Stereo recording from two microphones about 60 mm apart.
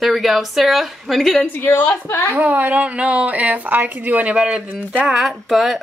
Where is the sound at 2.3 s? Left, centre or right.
Right.